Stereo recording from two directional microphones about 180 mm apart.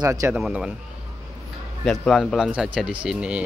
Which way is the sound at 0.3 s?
Centre (ahead or behind).